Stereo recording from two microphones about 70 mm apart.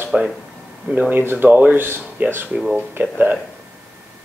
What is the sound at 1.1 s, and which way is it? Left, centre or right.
Speech, right.